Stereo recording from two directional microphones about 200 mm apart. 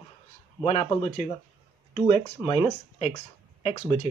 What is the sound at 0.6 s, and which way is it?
Speech, 30° left (ahead or behind).